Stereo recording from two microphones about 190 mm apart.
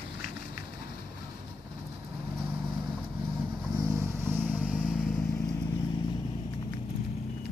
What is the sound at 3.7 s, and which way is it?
Vehicle, 15° right (ahead or behind).